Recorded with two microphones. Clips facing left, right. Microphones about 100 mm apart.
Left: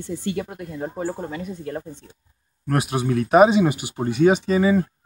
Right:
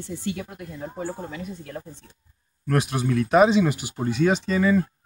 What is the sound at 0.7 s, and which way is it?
Speech, 45° left (ahead or behind).